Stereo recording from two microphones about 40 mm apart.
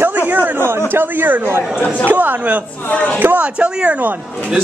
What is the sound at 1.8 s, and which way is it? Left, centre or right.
Speech, left.